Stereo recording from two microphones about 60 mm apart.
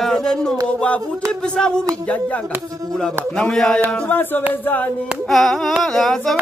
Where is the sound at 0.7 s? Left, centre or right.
Left.